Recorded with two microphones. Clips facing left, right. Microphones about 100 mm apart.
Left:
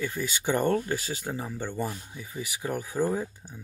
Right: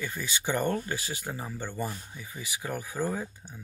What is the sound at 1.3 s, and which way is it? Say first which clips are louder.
Speech: left 4 dB; 15° left (ahead or behind).